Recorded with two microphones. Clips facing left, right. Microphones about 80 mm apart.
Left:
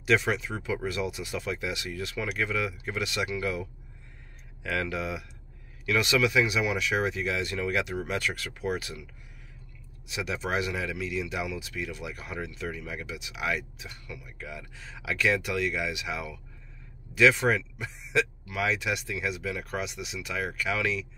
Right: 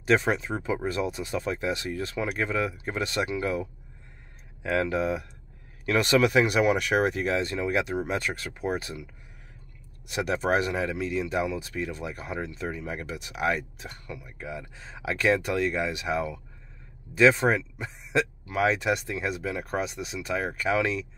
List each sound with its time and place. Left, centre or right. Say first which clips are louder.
0.0 s speech: right 2 dB; right
4.6 s speech: right 5 dB; right
10.0 s speech: right 6 dB; right
14.1 s speech: right 4 dB; right